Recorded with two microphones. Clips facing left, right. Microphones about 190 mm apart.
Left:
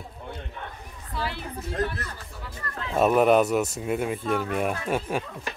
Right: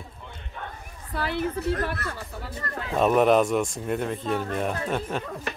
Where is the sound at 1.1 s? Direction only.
55° right (ahead or behind).